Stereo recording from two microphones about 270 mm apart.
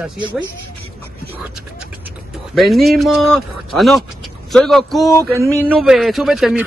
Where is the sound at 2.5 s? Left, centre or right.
Centre.